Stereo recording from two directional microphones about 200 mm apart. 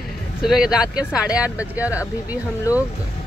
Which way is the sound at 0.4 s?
5° right (ahead or behind).